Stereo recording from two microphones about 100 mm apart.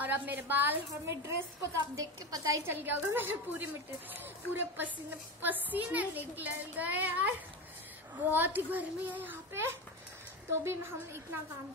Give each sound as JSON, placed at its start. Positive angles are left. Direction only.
{"t": 0.0, "sound": "a child's voice", "side_deg": -15}
{"t": 1.1, "sound": "a woman's voice", "side_deg": -30}
{"t": 2.7, "sound": "a child's voice", "side_deg": -20}